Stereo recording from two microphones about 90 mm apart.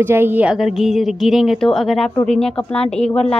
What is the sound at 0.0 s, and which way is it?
Speech, 25° right (ahead or behind).